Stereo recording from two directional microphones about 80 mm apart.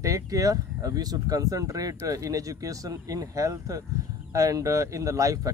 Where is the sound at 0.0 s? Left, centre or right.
Right.